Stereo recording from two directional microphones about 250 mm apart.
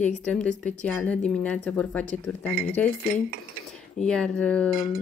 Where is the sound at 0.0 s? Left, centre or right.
Centre.